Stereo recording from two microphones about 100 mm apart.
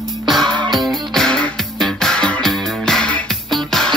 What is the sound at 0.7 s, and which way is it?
Music, centre (ahead or behind).